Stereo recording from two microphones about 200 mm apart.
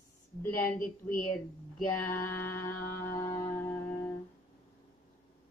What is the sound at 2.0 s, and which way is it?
Music, 10° left (ahead or behind).